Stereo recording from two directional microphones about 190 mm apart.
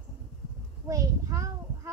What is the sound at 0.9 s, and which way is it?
Speech, 15° right (ahead or behind).